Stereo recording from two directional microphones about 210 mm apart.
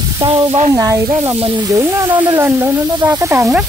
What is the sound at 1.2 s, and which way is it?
Speech, 25° right (ahead or behind).